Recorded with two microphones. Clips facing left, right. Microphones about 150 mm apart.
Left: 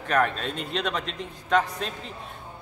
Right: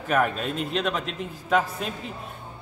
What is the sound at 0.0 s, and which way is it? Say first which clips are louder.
A man's voice: right 1 dB; 5° right (ahead or behind).